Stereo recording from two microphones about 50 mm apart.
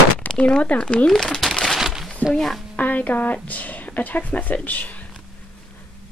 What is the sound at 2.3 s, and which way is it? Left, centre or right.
Speech, centre.